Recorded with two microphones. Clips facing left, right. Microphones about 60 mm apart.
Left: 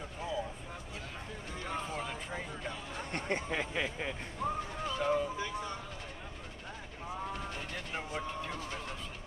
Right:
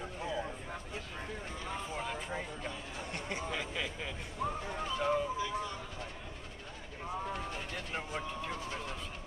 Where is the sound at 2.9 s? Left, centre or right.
Left.